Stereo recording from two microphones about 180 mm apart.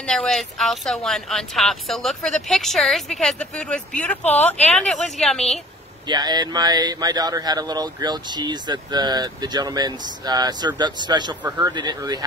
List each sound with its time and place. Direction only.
0.0 s speech: 5° left (ahead or behind)
4.2 s speech: 40° left (ahead or behind)
4.7 s speech: 5° left (ahead or behind)
6.0 s speech: 25° right (ahead or behind)